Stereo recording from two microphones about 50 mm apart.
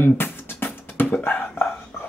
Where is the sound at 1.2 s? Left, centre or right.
Left.